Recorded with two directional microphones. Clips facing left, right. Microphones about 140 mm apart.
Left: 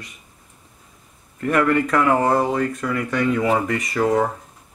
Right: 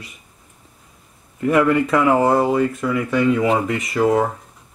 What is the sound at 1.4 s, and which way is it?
Speech, 10° right (ahead or behind).